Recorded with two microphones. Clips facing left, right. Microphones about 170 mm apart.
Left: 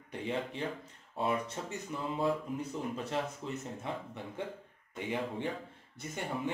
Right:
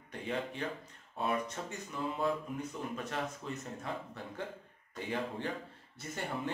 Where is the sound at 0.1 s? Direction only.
25° left (ahead or behind).